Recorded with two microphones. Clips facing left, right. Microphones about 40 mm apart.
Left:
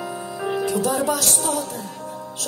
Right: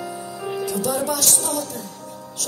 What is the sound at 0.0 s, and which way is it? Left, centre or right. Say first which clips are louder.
Music: left 2 dB; left.